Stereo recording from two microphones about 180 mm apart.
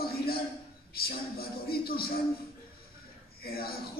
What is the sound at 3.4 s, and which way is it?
Speech, 60° left (ahead or behind).